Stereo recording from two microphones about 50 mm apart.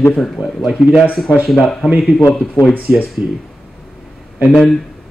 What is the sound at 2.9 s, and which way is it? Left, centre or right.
Speech, centre.